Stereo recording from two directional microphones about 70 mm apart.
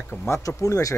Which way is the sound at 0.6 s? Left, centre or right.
Left.